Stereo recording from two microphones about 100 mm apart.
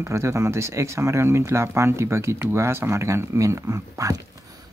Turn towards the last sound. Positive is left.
turn(degrees=-35)  # may be behind; listen again after turning